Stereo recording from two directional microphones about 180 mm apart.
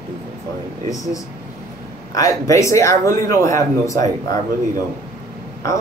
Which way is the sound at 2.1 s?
20° left (ahead or behind).